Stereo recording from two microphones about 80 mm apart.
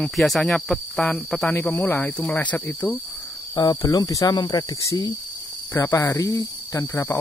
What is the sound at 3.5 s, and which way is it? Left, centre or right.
Speech, left.